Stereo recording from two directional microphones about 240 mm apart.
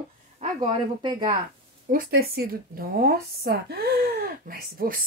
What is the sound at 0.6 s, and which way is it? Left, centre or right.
Speech, centre.